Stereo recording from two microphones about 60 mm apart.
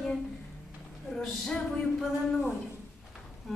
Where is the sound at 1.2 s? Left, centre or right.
Centre.